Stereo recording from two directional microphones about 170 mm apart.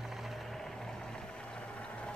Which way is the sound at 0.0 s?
Centre (ahead or behind).